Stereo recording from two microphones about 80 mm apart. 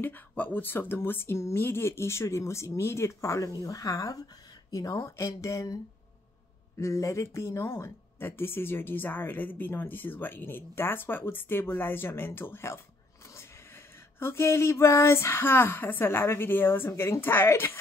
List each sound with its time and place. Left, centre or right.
0.0 s speech: left
6.8 s speech: left
14.2 s speech: left